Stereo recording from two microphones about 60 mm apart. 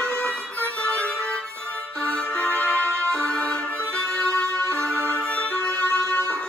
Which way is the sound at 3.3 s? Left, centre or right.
Left.